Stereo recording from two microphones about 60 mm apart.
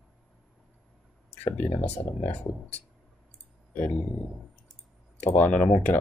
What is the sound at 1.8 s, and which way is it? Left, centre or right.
Speech, left.